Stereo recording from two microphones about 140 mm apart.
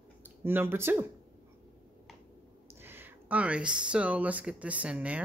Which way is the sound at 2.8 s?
15° right (ahead or behind).